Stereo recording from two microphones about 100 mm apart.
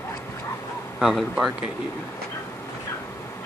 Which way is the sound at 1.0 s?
Centre (ahead or behind).